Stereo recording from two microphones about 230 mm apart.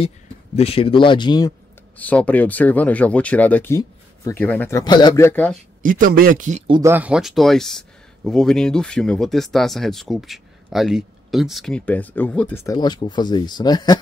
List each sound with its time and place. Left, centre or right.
0.6 s speech: left
2.0 s speech: centre
5.8 s a man's voice: right
6.7 s speech: centre